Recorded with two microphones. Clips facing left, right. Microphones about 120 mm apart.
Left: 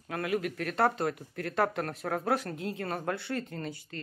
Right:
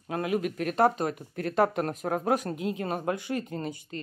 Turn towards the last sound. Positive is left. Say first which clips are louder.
# right 4 dB
turn(degrees=-20)  # may be behind; listen again after turning